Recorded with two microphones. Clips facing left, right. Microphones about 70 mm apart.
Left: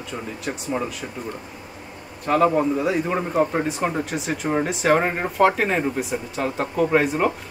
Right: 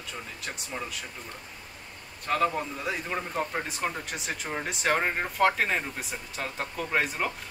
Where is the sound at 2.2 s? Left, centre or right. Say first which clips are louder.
Left 9 dB; centre.